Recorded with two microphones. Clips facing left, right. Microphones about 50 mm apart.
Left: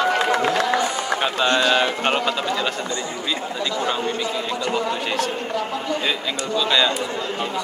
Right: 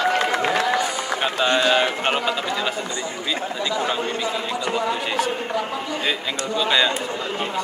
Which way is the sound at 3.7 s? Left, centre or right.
Centre.